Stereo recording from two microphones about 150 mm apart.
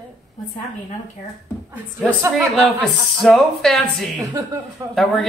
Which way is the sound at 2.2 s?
15° right (ahead or behind).